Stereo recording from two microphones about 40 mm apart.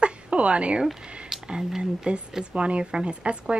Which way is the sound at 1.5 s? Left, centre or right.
Centre.